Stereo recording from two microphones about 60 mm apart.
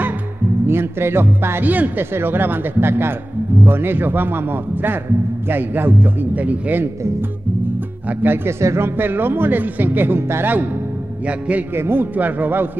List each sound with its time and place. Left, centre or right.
0.7 s speech: right
8.1 s speech: right
8.5 s speech: right
11.2 s a man's voice: right
11.7 s speech: right